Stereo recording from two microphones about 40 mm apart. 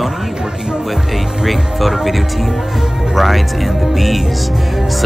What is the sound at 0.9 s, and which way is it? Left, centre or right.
Speech, centre.